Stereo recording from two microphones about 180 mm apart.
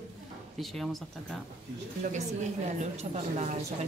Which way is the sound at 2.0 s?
40° right (ahead or behind).